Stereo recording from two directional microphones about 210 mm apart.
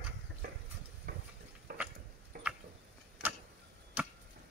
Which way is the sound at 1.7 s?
45° right (ahead or behind).